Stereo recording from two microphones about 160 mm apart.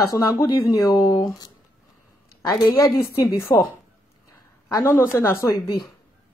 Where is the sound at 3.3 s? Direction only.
15° left (ahead or behind).